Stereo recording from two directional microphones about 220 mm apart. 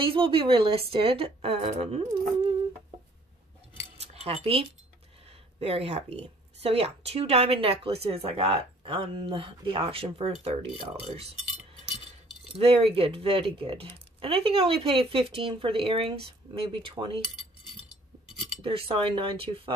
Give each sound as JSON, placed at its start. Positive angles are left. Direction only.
{"t": 0.0, "sound": "speech", "side_deg": -25}
{"t": 4.0, "sound": "cutlery", "side_deg": -30}
{"t": 5.2, "sound": "speech", "side_deg": -25}
{"t": 12.5, "sound": "speech", "side_deg": -25}
{"t": 18.6, "sound": "speech", "side_deg": -25}